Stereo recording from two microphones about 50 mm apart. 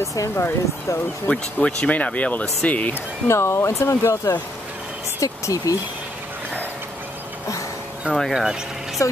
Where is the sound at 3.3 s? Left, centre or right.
Left.